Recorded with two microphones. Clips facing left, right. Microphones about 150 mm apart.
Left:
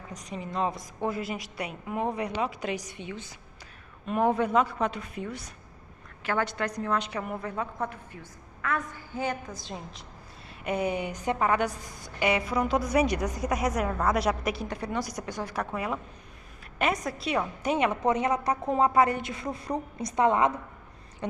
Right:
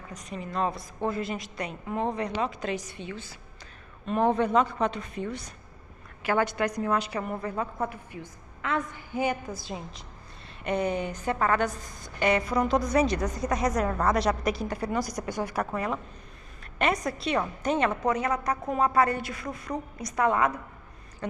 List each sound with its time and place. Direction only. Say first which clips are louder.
0.5 s a woman's voice: right 1 dB; 20° left (ahead or behind)
4.0 s a woman's voice: right 1 dB; 5° left (ahead or behind)
6.2 s a woman's voice: right 3 dB; 10° right (ahead or behind)
8.6 s a woman's voice: right 1 dB; 20° right (ahead or behind); by 10.0 s 5° right (ahead or behind)
10.6 s a woman's voice: right 1 dB; 5° left (ahead or behind)
18.0 s a woman's voice: left 1 dB; 20° left (ahead or behind)
21.2 s a sound: left 1 dB; 20° left (ahead or behind)